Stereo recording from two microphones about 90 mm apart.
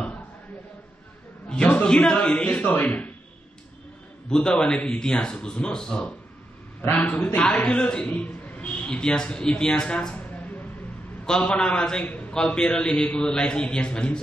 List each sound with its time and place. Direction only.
1.5 s a man's voice: 15° left (ahead or behind)
4.3 s a man's voice: 10° left (ahead or behind)
6.8 s a man's voice: 20° left (ahead or behind)